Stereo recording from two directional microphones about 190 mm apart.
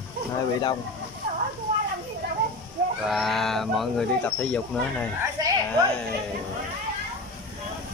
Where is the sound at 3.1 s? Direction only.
Centre (ahead or behind).